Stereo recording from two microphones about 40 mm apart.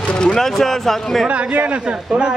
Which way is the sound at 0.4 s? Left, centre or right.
Centre.